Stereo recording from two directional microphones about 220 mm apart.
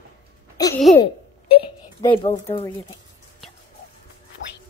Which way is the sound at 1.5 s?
25° left (ahead or behind).